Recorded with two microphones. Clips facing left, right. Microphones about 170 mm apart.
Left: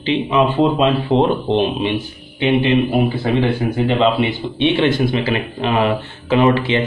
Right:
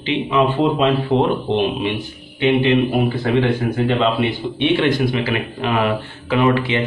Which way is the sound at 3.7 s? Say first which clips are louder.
Left 4 dB; 15° left (ahead or behind).